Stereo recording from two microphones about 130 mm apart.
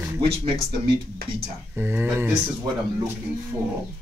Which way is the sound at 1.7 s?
15° right (ahead or behind).